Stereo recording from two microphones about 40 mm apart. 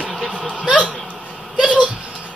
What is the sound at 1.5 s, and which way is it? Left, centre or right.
Speech, right.